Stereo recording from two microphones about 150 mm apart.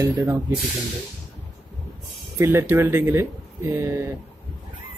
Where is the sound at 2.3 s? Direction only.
15° right (ahead or behind).